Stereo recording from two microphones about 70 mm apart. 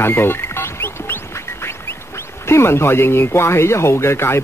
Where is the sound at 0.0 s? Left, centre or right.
Left.